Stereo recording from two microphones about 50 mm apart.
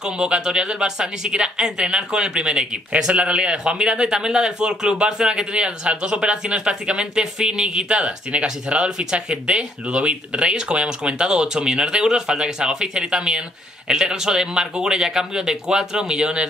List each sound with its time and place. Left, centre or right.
0.0 s speech: centre